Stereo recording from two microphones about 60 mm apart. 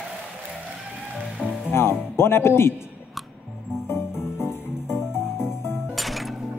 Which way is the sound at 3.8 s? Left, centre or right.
Left.